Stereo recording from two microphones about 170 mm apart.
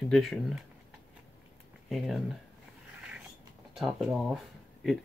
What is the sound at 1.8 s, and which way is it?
Speech, centre (ahead or behind).